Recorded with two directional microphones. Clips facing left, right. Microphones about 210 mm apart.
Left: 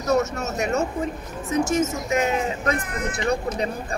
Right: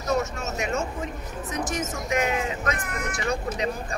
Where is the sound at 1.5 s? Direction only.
25° left (ahead or behind).